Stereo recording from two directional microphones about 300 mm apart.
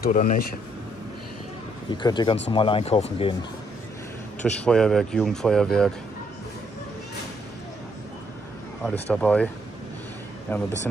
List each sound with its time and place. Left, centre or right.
0.0 s speech: left
1.9 s speech: centre
4.4 s speech: centre
8.8 s speech: centre
10.5 s speech: centre